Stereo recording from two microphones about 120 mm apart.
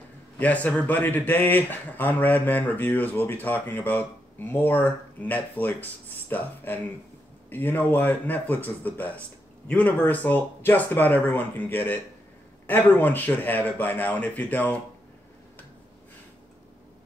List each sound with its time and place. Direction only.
0.4 s speech: 10° left (ahead or behind)